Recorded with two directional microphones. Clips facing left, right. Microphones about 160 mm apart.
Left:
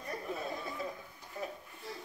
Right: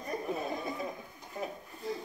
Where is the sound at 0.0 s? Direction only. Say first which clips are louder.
Right 4 dB; 20° right (ahead or behind).